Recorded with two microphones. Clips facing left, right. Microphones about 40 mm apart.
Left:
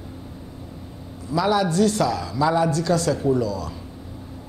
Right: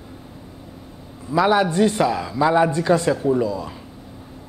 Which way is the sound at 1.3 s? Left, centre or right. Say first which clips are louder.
Right 3 dB; right.